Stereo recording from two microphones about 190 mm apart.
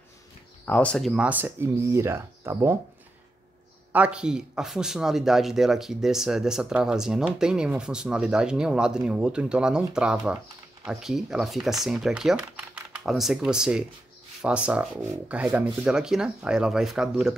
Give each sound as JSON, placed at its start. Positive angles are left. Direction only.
{"t": 0.7, "sound": "speech", "side_deg": 5}
{"t": 3.9, "sound": "a man's voice", "side_deg": -5}